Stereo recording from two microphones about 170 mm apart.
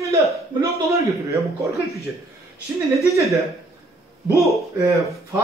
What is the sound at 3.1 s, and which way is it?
Speech, 15° right (ahead or behind).